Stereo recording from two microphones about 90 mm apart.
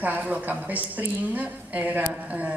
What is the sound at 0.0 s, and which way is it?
A woman's voice, 20° right (ahead or behind).